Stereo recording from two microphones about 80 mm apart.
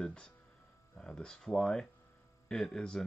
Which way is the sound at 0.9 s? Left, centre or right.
Centre.